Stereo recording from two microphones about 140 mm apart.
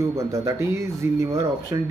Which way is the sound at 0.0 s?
20° right (ahead or behind).